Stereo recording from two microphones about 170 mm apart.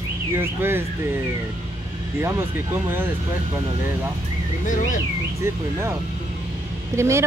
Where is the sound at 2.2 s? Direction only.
15° right (ahead or behind).